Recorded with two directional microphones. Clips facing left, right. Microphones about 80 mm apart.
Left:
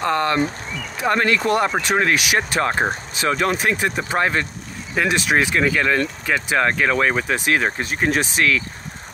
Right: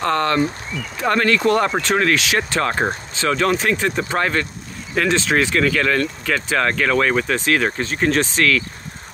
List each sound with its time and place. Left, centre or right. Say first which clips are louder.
0.0 s speech: right 1 dB; centre